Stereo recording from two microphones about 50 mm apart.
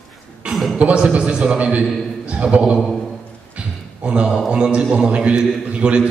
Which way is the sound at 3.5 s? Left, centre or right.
Right.